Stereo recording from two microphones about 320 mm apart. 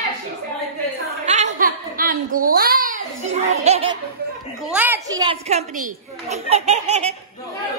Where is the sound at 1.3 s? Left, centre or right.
Right.